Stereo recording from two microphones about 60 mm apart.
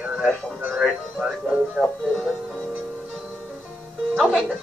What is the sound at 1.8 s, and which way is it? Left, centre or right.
Speech, centre.